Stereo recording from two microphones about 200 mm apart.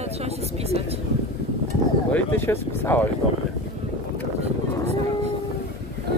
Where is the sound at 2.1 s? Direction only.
10° left (ahead or behind).